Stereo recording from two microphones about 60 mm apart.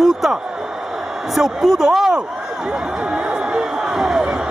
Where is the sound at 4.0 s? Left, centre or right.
Centre.